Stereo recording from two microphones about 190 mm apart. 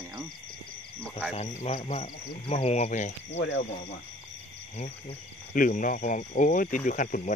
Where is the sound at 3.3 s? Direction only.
70° left (ahead or behind).